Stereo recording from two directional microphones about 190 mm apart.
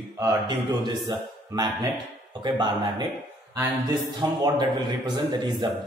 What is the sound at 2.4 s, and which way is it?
Speech, 20° right (ahead or behind).